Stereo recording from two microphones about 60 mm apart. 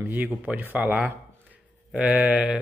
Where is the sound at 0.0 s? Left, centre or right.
Right.